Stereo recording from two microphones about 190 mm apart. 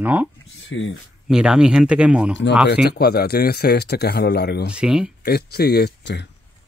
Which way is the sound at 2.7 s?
55° left (ahead or behind).